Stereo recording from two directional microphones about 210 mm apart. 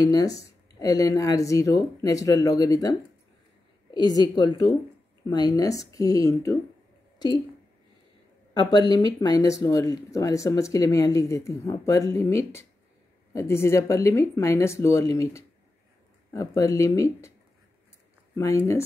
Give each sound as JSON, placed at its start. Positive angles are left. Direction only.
{"t": 0.0, "sound": "a woman's voice", "side_deg": 15}
{"t": 8.5, "sound": "speech", "side_deg": 20}
{"t": 18.3, "sound": "speech", "side_deg": 15}